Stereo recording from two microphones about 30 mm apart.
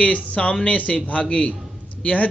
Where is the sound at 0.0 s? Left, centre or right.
Left.